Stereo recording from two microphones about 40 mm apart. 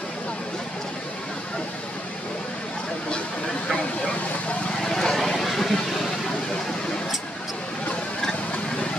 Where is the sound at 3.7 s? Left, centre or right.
Left.